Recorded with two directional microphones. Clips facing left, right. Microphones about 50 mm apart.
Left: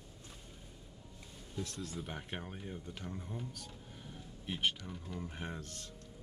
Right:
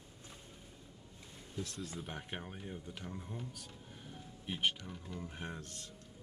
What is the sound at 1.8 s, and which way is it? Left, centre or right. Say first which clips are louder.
Speech: left 1 dB; centre.